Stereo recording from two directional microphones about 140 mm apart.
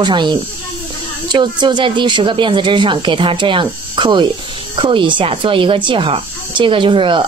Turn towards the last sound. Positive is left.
turn(degrees=-35)  # may be behind; listen again after turning